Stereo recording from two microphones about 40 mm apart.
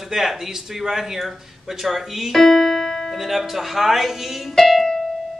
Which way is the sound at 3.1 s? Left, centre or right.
Centre.